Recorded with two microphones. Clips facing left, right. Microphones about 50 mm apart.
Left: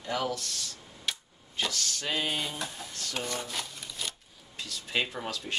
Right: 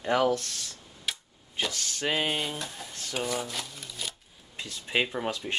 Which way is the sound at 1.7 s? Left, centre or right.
Right.